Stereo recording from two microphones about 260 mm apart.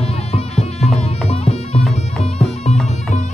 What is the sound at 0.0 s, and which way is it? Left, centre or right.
Music, left.